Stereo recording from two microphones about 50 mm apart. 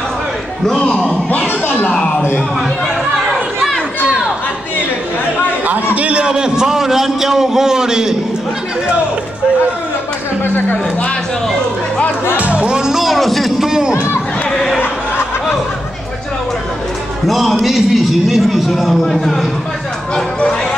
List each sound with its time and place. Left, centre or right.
0.7 s a man's voice: left
1.3 s speech: left
5.9 s a sound: right
10.4 s speech: left
12.5 s music: centre
13.7 s a sound: centre
14.5 s crowd: centre
17.3 s a man's voice: centre